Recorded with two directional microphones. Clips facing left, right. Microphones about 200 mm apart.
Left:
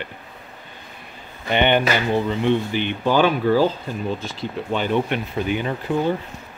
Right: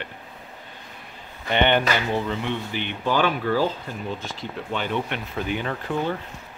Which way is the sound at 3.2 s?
30° left (ahead or behind).